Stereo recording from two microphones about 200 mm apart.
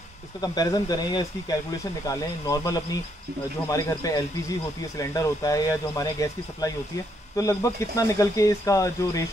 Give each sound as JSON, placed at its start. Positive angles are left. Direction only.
{"t": 0.4, "sound": "speech", "side_deg": 20}